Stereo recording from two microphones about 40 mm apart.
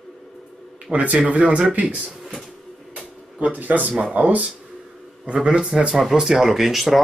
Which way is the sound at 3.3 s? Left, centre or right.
Right.